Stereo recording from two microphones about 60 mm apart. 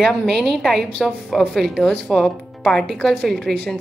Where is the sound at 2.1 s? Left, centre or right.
Centre.